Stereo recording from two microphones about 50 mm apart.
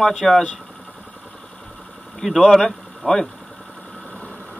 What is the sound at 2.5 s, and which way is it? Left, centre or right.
Speech, centre.